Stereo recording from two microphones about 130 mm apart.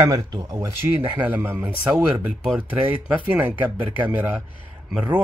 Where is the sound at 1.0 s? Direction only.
15° right (ahead or behind).